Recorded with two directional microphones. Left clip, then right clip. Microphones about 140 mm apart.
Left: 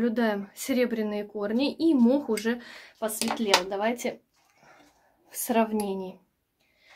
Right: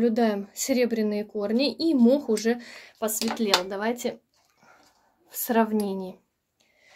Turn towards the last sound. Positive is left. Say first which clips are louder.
# right 2 dB
turn(degrees=-55)  # may be behind; listen again after turning